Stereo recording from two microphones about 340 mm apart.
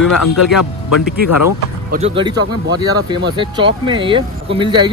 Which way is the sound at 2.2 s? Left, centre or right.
Centre.